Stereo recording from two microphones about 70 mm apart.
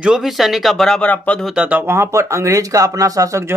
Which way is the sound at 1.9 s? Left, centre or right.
Right.